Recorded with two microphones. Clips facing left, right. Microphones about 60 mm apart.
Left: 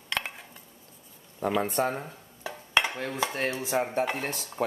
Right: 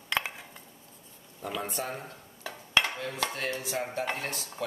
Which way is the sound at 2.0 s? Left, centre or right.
Centre.